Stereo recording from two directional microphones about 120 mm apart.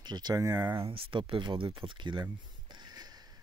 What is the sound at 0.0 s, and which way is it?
Speech, 35° right (ahead or behind).